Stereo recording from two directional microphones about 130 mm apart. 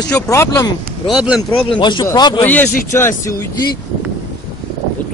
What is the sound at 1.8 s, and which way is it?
Speech, 30° left (ahead or behind).